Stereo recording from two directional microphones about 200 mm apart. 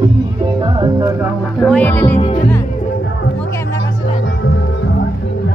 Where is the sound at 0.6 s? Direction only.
20° right (ahead or behind).